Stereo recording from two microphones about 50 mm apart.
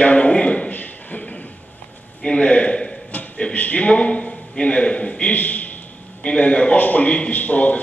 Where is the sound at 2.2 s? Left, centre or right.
Centre.